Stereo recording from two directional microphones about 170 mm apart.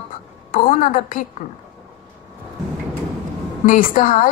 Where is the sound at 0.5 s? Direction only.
55° left (ahead or behind).